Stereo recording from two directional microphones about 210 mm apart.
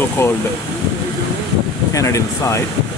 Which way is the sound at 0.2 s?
15° left (ahead or behind).